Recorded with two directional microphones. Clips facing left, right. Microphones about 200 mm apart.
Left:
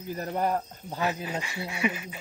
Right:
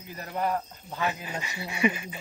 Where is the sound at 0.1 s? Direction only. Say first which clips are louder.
Left 2 dB; 40° left (ahead or behind).